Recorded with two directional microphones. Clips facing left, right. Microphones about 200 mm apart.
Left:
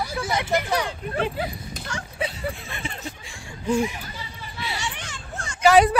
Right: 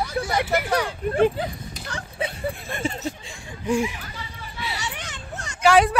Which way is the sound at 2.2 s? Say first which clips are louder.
Right 2 dB; 45° right (ahead or behind).